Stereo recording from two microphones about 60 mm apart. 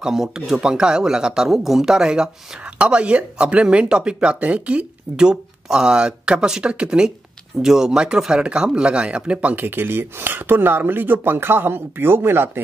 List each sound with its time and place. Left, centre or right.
0.0 s a man's voice: centre
9.7 s speech: right